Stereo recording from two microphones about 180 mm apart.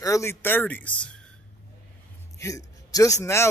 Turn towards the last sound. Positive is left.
turn(degrees=15)  # may be behind; listen again after turning